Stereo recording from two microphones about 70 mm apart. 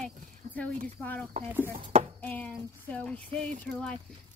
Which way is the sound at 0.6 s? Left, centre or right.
Left.